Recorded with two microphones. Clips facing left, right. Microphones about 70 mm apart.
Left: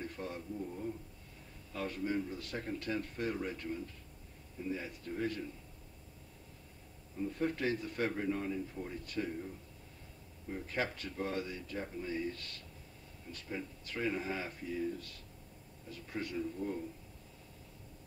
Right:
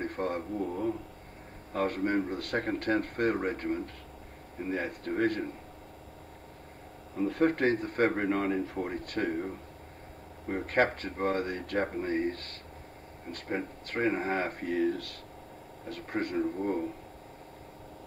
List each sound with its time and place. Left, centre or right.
0.0 s a sound: right
0.6 s speech: right
1.7 s a man's voice: right
7.2 s a man's voice: right
15.8 s a man's voice: right